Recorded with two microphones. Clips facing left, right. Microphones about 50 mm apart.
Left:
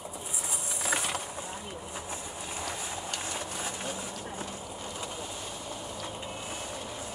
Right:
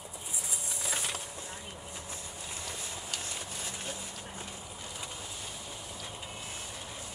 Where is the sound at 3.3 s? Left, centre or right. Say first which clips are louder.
Left 5 dB; left.